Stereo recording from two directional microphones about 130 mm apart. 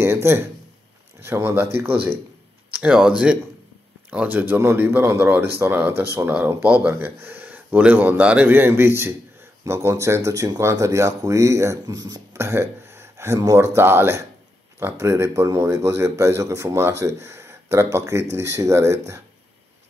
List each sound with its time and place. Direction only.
0.0 s speech: 20° right (ahead or behind)